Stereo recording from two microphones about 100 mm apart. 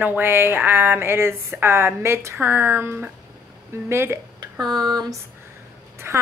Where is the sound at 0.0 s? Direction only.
20° right (ahead or behind).